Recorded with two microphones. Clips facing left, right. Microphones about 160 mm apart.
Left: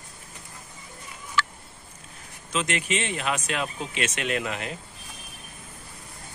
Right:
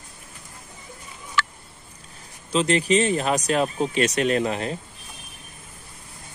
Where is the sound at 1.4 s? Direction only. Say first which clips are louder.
Right 1 dB; 70° right (ahead or behind).